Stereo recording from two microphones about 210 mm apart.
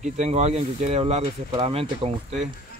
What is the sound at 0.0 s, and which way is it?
Speech, 30° right (ahead or behind).